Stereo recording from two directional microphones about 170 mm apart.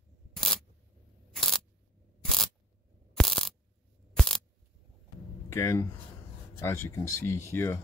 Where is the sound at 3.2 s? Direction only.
Centre (ahead or behind).